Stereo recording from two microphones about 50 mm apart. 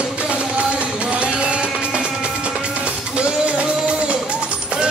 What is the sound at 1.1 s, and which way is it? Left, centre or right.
Music, right.